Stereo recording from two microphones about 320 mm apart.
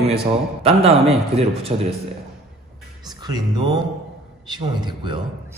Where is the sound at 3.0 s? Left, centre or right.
Centre.